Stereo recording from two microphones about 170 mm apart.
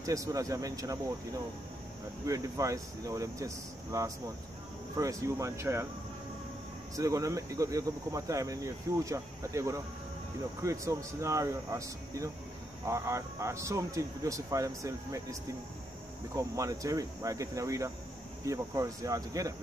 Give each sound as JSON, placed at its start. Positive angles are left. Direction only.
{"t": 0.0, "sound": "speech", "side_deg": -20}
{"t": 2.2, "sound": "speech", "side_deg": -20}
{"t": 7.0, "sound": "speech", "side_deg": -20}
{"t": 16.3, "sound": "speech", "side_deg": -20}